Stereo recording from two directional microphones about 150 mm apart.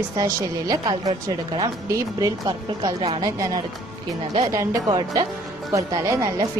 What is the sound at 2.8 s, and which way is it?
Speech, 40° right (ahead or behind).